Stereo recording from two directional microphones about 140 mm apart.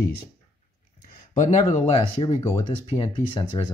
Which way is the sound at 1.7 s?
45° left (ahead or behind).